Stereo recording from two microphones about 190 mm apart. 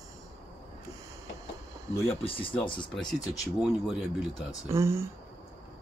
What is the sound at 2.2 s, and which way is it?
Speech, 30° left (ahead or behind).